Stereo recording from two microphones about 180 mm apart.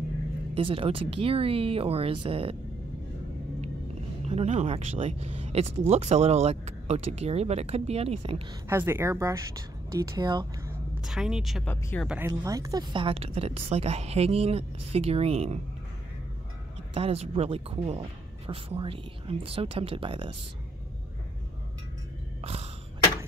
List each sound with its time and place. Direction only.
0.6 s speech: 30° right (ahead or behind)
4.3 s speech: 35° right (ahead or behind)
8.6 s a woman's voice: 15° right (ahead or behind)
11.0 s a woman's voice: centre (ahead or behind)
11.6 s speech: 10° left (ahead or behind)
12.1 s speech: 15° right (ahead or behind); by 15.6 s 35° right (ahead or behind)
16.9 s speech: 35° right (ahead or behind)
22.4 s cough: 35° right (ahead or behind)